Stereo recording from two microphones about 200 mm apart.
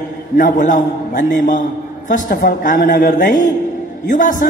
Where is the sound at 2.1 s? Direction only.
45° left (ahead or behind).